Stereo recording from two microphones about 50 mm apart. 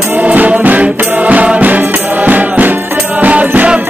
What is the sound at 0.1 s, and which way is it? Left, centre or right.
Music, right.